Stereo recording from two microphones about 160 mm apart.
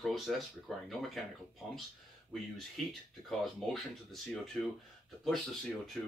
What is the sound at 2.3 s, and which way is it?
Speech, centre (ahead or behind).